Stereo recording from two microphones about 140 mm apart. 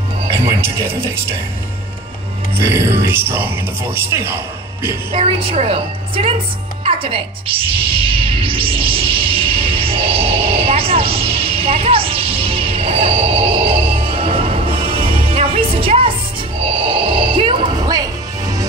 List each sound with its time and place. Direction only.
0.5 s speech: 15° right (ahead or behind)
2.5 s speech: 20° right (ahead or behind)
5.1 s a woman's voice: 40° right (ahead or behind)
6.8 s music: 40° right (ahead or behind)